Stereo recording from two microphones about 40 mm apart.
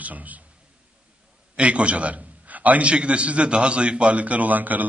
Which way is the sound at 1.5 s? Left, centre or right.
Right.